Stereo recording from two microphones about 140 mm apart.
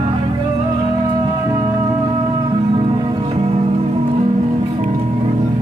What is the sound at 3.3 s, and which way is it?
Music, 45° right (ahead or behind).